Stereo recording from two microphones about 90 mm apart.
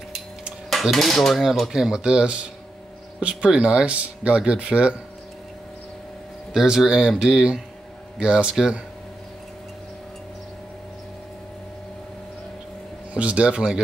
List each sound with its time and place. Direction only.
0.7 s cutlery: centre (ahead or behind)
3.2 s speech: 15° right (ahead or behind)
6.5 s speech: 5° right (ahead or behind)
13.1 s speech: 15° right (ahead or behind)